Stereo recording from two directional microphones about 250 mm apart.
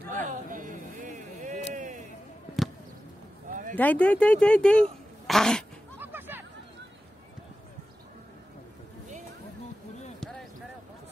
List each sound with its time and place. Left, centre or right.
0.1 s chatter: right
1.7 s a sound: right
2.6 s basketball bounce: centre
3.7 s speech: centre
5.2 s dog: centre
5.9 s music: centre